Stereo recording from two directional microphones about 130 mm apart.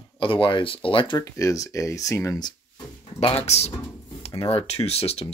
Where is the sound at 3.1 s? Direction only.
50° left (ahead or behind).